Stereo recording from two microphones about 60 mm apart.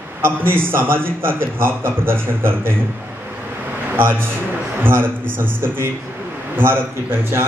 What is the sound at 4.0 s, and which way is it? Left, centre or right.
A man's voice, right.